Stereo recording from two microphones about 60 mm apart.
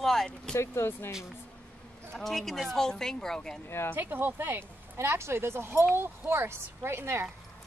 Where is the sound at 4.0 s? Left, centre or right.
Right.